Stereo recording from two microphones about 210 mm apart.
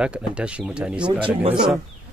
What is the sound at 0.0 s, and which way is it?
Speech, 5° right (ahead or behind).